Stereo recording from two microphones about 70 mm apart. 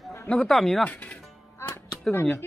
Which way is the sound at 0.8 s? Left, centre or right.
Centre.